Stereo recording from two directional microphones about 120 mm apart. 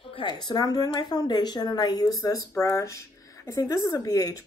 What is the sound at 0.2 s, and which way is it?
Speech, 35° left (ahead or behind).